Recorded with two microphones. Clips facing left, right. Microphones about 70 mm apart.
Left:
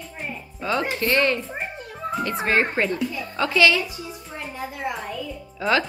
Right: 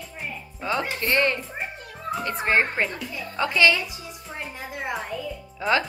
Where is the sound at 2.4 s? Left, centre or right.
Right.